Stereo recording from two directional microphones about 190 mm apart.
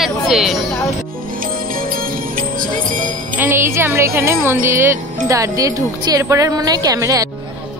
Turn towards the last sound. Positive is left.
turn(degrees=-15)  # may be behind; listen again after turning